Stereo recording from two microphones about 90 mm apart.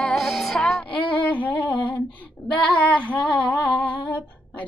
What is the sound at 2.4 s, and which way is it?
Female singing, 15° left (ahead or behind).